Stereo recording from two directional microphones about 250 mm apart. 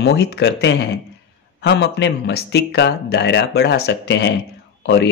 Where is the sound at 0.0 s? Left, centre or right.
Left.